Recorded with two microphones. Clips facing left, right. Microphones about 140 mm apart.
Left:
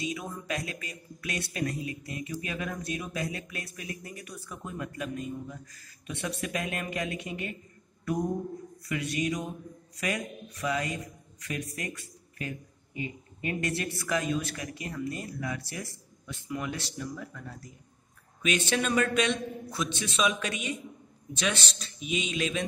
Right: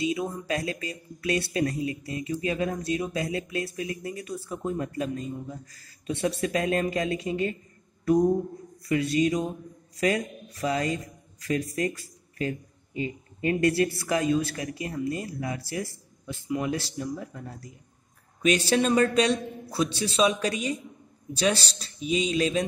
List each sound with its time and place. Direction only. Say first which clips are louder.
0.0 s speech: right 7 dB; 25° right (ahead or behind)
8.0 s a sound: right 9 dB; 30° right (ahead or behind)
8.8 s a man's voice: right 7 dB; 30° right (ahead or behind)